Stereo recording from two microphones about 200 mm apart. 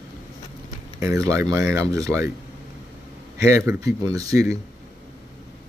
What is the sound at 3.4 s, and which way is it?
Speech, 15° right (ahead or behind).